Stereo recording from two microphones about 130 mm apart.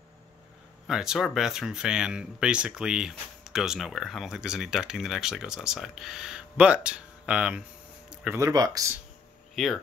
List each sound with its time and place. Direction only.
0.8 s speech: 5° right (ahead or behind)
8.1 s a sound: 10° right (ahead or behind)
8.4 s speech: 25° right (ahead or behind)
9.6 s speech: centre (ahead or behind)